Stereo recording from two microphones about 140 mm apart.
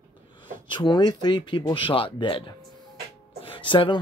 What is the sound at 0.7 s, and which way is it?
Speech, 30° left (ahead or behind).